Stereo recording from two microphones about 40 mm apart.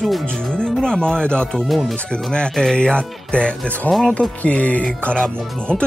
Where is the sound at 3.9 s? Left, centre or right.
Centre.